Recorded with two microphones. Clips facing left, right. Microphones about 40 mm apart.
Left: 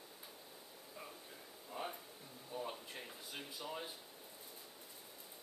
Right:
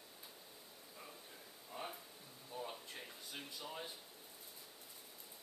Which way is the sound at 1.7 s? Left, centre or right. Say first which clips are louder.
Left 3 dB; centre.